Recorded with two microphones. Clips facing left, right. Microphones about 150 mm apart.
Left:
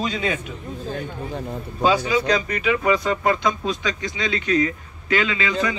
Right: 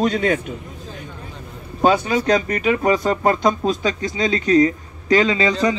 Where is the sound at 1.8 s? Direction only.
55° right (ahead or behind).